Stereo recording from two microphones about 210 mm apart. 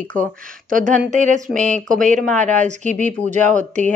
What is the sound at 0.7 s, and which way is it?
Speech, 40° right (ahead or behind).